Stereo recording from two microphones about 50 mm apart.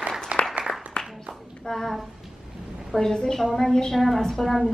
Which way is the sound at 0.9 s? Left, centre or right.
Centre.